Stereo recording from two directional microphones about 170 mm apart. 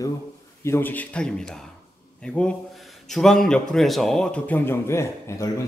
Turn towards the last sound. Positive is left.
turn(degrees=20)  # may be behind; listen again after turning